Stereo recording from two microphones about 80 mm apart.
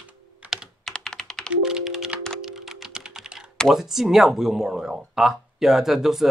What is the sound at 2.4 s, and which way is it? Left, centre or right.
Computer keyboard, centre.